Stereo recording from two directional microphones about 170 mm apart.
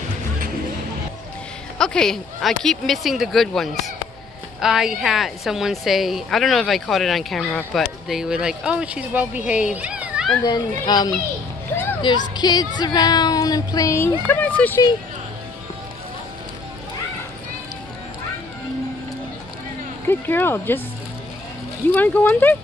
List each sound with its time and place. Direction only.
1.8 s a woman's voice: 5° left (ahead or behind)
10.4 s speech: 25° left (ahead or behind)
11.7 s a sound: 10° left (ahead or behind)
12.4 s speech: 25° left (ahead or behind); by 14.8 s 10° left (ahead or behind)
20.1 s speech: 10° left (ahead or behind)
21.9 s speech: 10° left (ahead or behind)